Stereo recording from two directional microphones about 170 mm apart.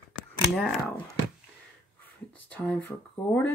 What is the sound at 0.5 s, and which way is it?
Speech, centre (ahead or behind).